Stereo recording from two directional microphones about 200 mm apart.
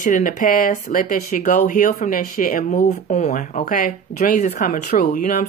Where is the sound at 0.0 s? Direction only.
45° left (ahead or behind).